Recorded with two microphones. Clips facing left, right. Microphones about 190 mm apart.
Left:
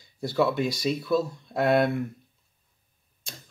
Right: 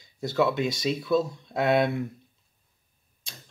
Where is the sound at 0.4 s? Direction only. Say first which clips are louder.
Even; centre (ahead or behind).